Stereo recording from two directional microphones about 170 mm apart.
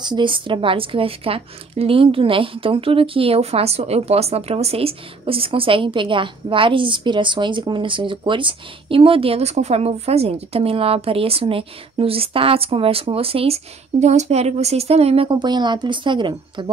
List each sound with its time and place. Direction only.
0.0 s speech: 25° right (ahead or behind)